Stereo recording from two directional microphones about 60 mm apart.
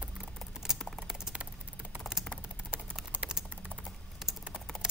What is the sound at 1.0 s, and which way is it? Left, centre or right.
Typing, centre.